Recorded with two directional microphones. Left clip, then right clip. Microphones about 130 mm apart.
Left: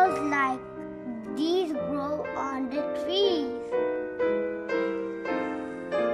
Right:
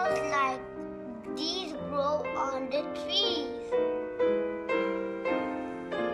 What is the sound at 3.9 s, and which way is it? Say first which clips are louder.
Music: left 1 dB; 10° right (ahead or behind).